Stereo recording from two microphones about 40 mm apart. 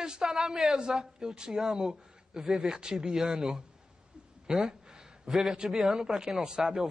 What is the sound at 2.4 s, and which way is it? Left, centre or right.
Speech, centre.